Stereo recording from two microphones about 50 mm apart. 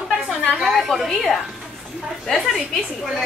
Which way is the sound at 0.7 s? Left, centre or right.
Centre.